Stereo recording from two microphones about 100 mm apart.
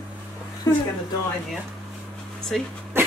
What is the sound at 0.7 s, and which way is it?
Speech, 35° left (ahead or behind).